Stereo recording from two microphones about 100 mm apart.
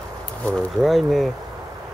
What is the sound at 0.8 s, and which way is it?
Speech, centre (ahead or behind).